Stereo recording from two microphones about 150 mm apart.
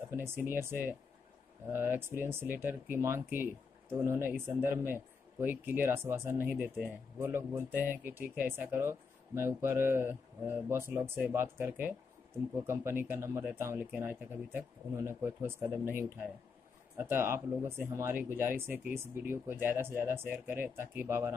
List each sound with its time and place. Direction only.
0.1 s speech: 15° right (ahead or behind)